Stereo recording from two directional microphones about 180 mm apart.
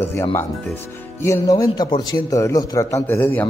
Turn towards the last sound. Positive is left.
turn(degrees=10)  # may be behind; listen again after turning